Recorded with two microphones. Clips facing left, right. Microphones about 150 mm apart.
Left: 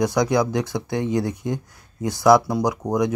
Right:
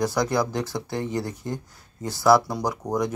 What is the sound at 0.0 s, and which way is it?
Speech, 15° left (ahead or behind).